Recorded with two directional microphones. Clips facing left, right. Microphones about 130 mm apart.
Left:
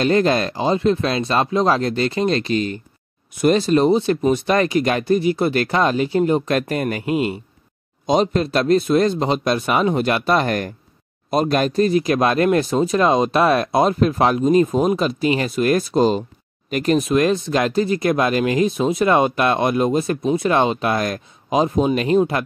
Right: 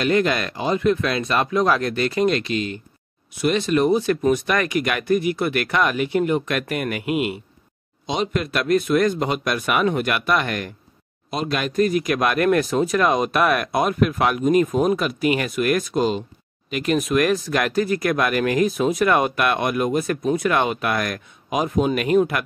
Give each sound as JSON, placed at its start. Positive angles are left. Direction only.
{"t": 0.0, "sound": "speech", "side_deg": 35}